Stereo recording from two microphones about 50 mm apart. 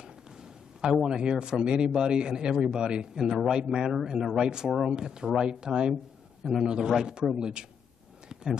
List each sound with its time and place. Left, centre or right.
1.0 s speech: centre